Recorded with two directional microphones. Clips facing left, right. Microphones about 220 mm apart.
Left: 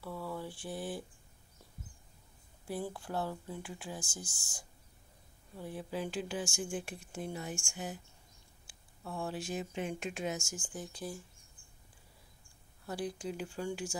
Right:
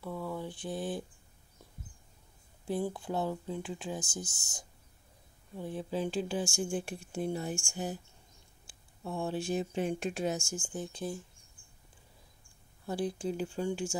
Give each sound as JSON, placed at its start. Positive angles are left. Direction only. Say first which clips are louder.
{"t": 0.0, "sound": "mantra", "louder": "right 3 dB", "side_deg": -15}
{"t": 2.6, "sound": "speech", "louder": "right 5 dB", "side_deg": -20}
{"t": 12.8, "sound": "speech", "louder": "right 5 dB", "side_deg": -25}